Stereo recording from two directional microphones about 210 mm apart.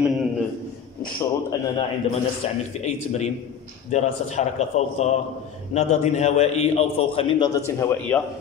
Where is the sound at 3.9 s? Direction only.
35° left (ahead or behind); by 8.1 s 15° left (ahead or behind).